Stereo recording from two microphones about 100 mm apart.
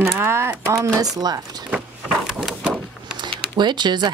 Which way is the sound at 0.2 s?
25° right (ahead or behind).